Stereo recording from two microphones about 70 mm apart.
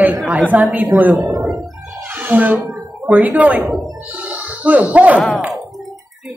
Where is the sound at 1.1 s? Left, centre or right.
Right.